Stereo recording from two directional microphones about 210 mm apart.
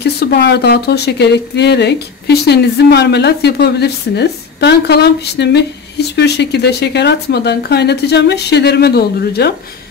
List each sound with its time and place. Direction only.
0.0 s speech: 50° left (ahead or behind)